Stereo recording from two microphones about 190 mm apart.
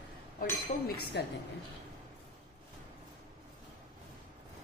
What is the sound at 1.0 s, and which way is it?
Speech, 60° left (ahead or behind).